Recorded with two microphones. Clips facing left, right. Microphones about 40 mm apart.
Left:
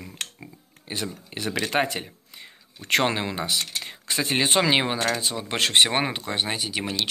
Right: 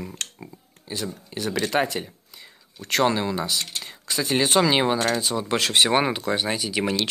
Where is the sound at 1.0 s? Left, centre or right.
Left.